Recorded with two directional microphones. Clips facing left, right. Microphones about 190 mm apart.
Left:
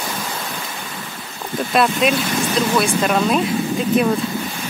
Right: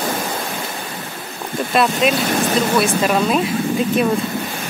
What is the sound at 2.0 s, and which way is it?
Speech, centre (ahead or behind).